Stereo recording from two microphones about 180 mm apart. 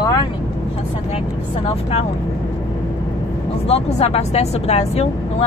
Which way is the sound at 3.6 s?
35° left (ahead or behind).